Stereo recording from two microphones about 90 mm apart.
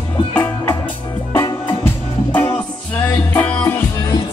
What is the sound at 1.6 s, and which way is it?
Music, 25° left (ahead or behind).